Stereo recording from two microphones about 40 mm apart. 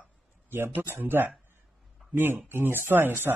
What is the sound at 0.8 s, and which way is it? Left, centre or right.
Speech, right.